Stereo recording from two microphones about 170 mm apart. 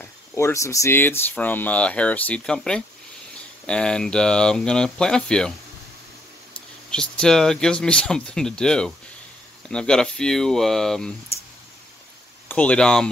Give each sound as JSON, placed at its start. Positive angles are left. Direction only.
{"t": 0.0, "sound": "speech", "side_deg": 15}
{"t": 6.9, "sound": "speech", "side_deg": 5}
{"t": 12.4, "sound": "speech", "side_deg": 5}